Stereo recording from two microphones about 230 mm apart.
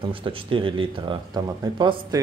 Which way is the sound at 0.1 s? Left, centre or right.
Right.